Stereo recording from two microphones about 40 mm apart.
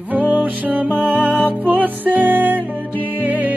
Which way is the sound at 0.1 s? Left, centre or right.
Right.